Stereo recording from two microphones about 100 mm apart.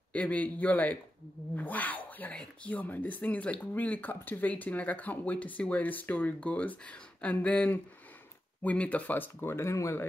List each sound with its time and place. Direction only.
0.1 s speech: 15° left (ahead or behind)